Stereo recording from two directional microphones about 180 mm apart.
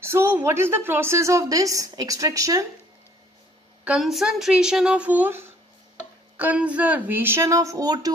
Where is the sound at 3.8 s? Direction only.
5° right (ahead or behind).